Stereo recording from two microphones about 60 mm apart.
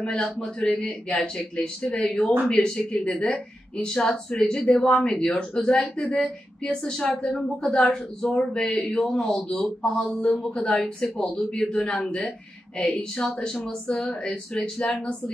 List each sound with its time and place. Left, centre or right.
0.0 s a woman's voice: centre